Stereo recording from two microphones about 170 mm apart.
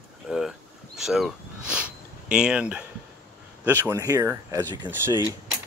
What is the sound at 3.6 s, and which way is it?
Speech, 15° right (ahead or behind).